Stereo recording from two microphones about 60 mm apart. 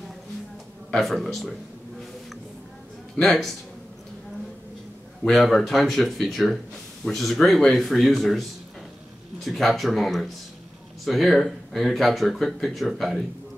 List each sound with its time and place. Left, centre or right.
0.9 s speech: centre
3.2 s speech: centre
5.3 s speech: centre